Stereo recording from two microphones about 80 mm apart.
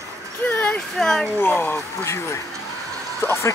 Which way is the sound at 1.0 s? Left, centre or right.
Centre.